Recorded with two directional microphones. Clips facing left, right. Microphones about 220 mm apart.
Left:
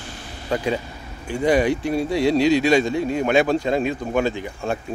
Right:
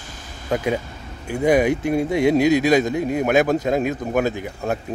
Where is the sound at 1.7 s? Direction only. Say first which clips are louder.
Right 2 dB; 20° right (ahead or behind).